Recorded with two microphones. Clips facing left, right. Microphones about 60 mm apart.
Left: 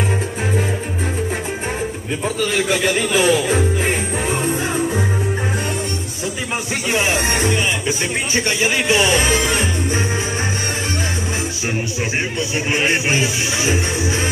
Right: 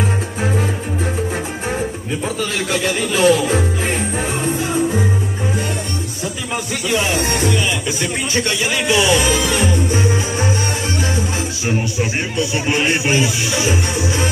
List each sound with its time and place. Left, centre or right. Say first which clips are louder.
2.2 s music: left 3 dB; centre
6.9 s speech: even; left
11.6 s a sound: right 5 dB; centre